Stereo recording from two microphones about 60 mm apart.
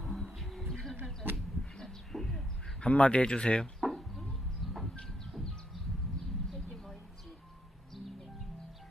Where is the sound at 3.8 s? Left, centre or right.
Centre.